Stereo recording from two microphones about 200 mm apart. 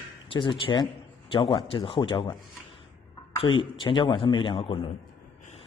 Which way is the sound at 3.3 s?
25° left (ahead or behind).